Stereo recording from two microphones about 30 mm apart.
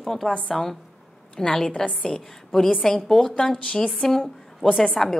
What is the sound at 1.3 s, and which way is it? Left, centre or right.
Speech, left.